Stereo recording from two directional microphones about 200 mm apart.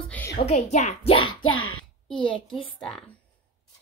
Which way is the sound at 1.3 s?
90° left.